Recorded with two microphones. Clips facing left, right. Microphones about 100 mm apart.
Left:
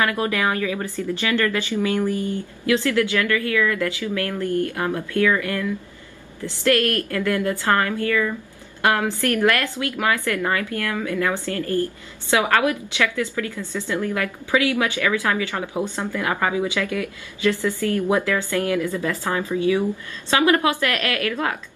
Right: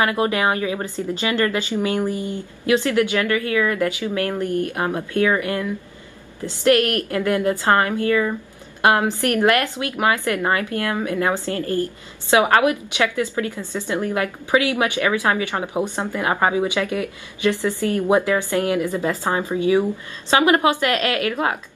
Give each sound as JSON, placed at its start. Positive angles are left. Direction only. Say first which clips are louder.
{"t": 0.0, "sound": "a woman's voice", "louder": "right 2 dB", "side_deg": -25}